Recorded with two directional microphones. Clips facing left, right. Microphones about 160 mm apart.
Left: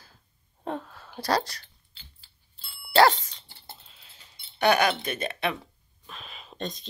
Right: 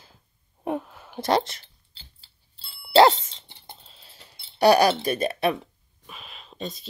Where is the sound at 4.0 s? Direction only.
35° right (ahead or behind).